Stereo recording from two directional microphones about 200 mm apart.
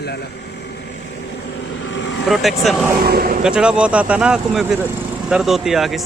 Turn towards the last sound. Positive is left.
turn(degrees=0)  # may be behind; listen again after turning